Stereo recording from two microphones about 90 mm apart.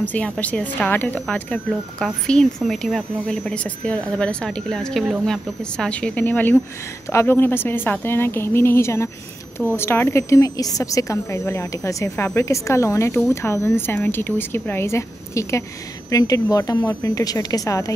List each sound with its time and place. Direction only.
0.0 s speech: 15° left (ahead or behind)
1.2 s speech: 10° left (ahead or behind)
2.6 s a woman's voice: centre (ahead or behind); by 17.9 s 40° left (ahead or behind)